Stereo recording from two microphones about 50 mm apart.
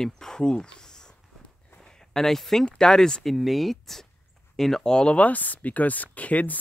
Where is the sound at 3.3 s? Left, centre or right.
Centre.